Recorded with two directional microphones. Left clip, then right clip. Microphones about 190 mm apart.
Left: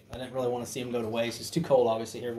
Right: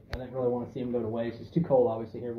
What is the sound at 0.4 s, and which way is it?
Speech, 15° left (ahead or behind).